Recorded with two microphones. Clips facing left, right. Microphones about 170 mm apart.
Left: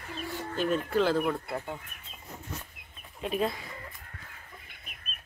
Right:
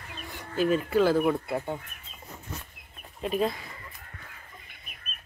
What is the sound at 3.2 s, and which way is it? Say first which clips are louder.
Speech: right 2 dB; centre (ahead or behind).